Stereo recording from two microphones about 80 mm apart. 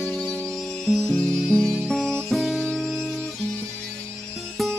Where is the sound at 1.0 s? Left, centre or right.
Left.